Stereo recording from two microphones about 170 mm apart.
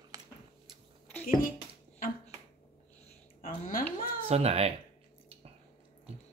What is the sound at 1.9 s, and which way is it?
Finger snapping, 45° left (ahead or behind).